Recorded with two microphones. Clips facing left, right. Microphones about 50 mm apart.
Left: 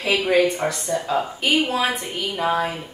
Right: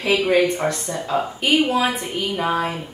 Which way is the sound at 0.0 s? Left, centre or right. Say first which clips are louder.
Right 1 dB; centre.